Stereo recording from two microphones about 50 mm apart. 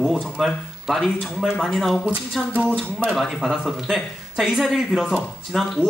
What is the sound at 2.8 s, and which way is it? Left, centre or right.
Speech, right.